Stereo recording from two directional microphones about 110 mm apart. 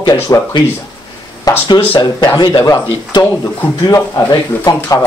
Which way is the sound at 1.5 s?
35° left (ahead or behind).